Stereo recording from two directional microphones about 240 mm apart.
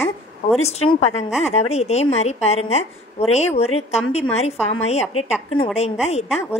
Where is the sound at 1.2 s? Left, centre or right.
Centre.